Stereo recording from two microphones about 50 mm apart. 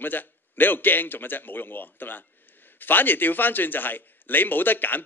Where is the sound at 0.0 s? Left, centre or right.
Left.